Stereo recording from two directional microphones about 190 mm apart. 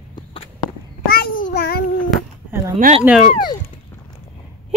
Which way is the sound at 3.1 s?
10° right (ahead or behind).